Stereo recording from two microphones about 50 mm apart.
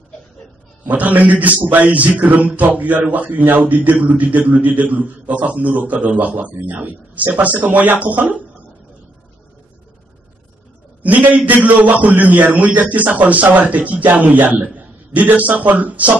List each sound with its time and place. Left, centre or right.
0.8 s a man's voice: right
11.0 s a man's voice: right